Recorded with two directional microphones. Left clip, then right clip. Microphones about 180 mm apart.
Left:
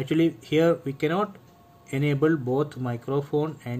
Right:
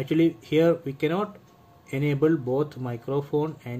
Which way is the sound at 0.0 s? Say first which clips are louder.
Right 1 dB; 10° left (ahead or behind).